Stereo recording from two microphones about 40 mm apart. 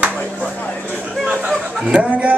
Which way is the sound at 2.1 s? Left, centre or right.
Right.